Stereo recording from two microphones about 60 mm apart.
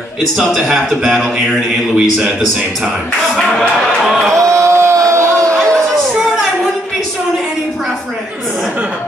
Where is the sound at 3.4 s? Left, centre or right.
Centre.